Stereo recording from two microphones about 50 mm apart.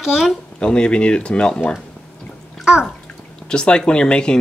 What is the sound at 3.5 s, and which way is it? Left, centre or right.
Speech, centre.